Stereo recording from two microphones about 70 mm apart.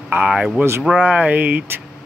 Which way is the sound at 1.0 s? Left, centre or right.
Right.